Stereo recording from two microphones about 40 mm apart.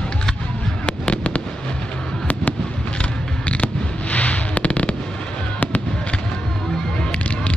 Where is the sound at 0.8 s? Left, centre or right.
Left.